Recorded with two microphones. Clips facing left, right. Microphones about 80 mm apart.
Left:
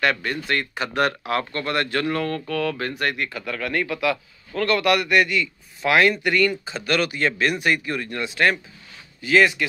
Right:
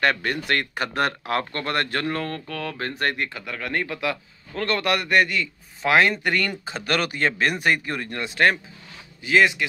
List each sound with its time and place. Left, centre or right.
0.0 s a man's voice: right
0.5 s speech: right
0.9 s a man's voice: right
3.4 s a man's voice: right
9.2 s speech: centre